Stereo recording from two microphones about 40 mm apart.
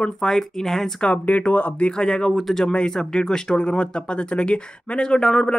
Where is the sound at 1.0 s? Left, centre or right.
Left.